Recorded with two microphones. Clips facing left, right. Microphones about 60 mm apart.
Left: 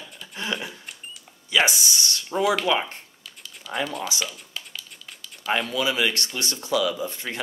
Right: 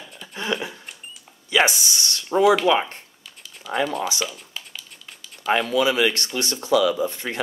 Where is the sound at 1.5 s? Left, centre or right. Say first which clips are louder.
Right 2 dB; right.